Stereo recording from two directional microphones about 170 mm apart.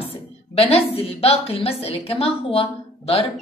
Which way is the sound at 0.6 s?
35° left (ahead or behind).